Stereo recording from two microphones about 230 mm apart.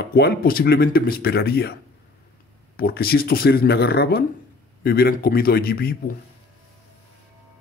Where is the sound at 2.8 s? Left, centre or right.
Left.